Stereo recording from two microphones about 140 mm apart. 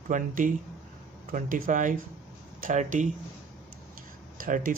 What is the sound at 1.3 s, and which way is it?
Speech, 80° right.